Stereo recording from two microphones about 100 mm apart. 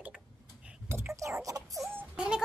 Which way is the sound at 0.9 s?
25° right (ahead or behind).